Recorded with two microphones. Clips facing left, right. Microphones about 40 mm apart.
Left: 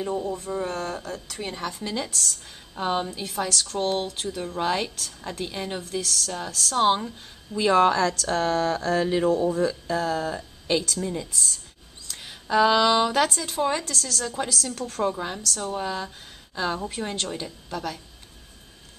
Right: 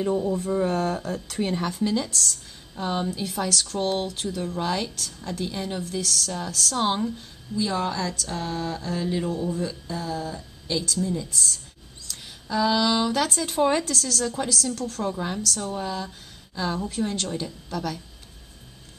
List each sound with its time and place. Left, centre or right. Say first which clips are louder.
0.0 s a woman's voice: right 4 dB; centre
2.7 s a woman's voice: left 2 dB; left
3.2 s a woman's voice: right 1 dB; centre
5.8 s a woman's voice: right 1 dB; centre
7.5 s speech: left 7 dB; left
9.5 s speech: left 5 dB; left
11.2 s a woman's voice: right 1 dB; centre
12.1 s a sound: left 1 dB; left
12.4 s a sound: left 3 dB; left
13.3 s a woman's voice: right 3 dB; centre